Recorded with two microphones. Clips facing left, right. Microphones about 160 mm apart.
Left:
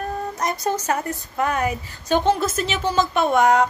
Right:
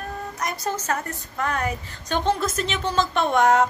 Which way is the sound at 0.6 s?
15° left (ahead or behind).